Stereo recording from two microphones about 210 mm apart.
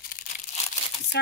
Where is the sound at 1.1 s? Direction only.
55° left (ahead or behind).